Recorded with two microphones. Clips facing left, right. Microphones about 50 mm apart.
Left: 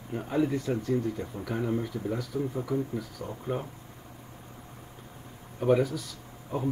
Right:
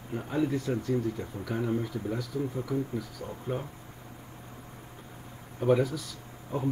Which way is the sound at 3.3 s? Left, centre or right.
Centre.